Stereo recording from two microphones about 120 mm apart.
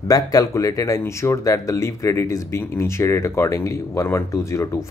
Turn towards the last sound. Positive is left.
turn(degrees=25)  # may be behind; listen again after turning